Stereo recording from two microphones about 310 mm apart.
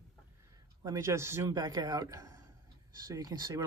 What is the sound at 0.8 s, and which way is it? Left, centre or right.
Speech, centre.